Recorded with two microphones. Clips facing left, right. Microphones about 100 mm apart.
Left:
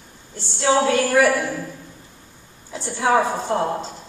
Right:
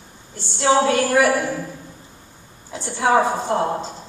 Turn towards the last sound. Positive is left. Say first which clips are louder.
# right 1 dB
turn(degrees=-20)  # may be behind; listen again after turning